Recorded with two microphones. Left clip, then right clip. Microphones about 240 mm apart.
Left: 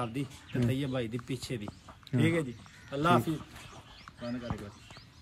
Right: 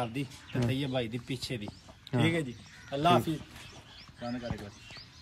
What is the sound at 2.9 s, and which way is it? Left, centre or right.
Speech, centre.